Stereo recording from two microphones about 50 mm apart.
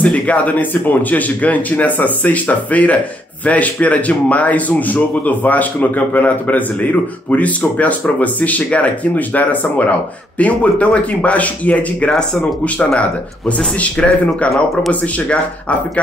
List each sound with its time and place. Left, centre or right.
0.1 s speech: left